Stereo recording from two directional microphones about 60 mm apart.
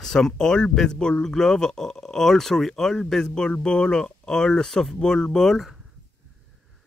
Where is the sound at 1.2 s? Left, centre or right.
Centre.